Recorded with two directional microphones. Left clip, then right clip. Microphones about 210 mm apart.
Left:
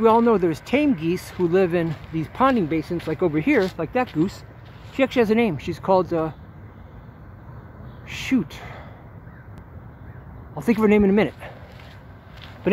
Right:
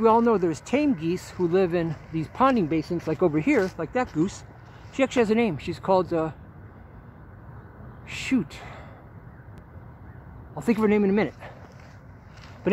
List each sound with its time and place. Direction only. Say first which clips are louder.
0.0 s speech: left 3 dB; centre (ahead or behind); by 3.3 s 20° right (ahead or behind)
3.3 s speech: left 3 dB; 5° right (ahead or behind)
8.1 s speech: left 3 dB; centre (ahead or behind)
10.5 s speech: left 4 dB; centre (ahead or behind)